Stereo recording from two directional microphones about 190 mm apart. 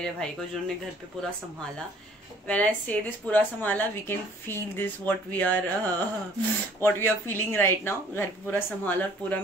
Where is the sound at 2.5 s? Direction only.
10° left (ahead or behind).